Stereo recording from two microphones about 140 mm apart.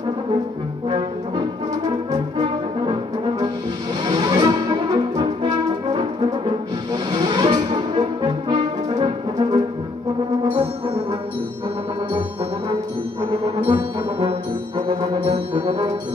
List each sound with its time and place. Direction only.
0.8 s brass instrument: 35° right (ahead or behind)
5.9 s music: 30° right (ahead or behind)
13.7 s brass instrument: 35° right (ahead or behind)